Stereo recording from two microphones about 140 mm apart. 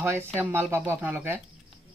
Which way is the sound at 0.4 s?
15° right (ahead or behind).